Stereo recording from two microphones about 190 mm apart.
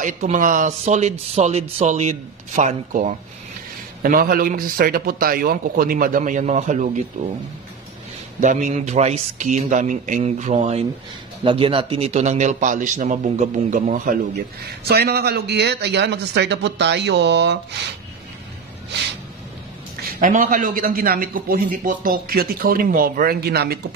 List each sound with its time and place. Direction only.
0.0 s a man's voice: 40° right (ahead or behind)
8.4 s speech: 40° right (ahead or behind)
14.9 s a man's voice: 55° right (ahead or behind)
20.0 s a man's voice: 45° right (ahead or behind)